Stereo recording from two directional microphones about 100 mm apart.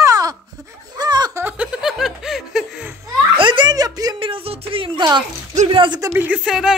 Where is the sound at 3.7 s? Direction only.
40° right (ahead or behind).